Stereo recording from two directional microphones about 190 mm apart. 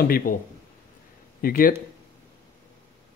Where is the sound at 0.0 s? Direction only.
50° left (ahead or behind).